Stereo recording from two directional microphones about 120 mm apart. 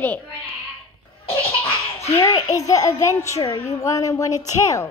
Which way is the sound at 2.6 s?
30° left (ahead or behind).